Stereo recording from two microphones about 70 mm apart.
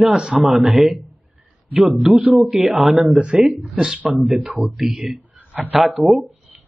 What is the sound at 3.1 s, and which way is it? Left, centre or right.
Speech, centre.